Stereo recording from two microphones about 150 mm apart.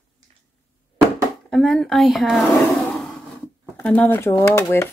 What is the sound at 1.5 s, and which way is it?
Speech, 5° left (ahead or behind).